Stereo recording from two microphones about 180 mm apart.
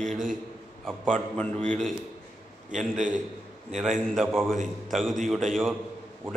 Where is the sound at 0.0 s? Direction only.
45° right (ahead or behind).